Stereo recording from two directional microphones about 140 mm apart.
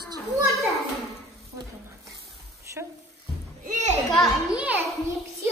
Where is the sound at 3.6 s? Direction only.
60° right (ahead or behind).